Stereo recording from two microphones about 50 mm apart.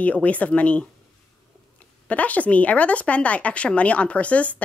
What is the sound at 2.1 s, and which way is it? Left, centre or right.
Speech, left.